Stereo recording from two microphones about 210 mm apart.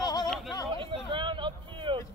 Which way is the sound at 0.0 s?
20° left (ahead or behind).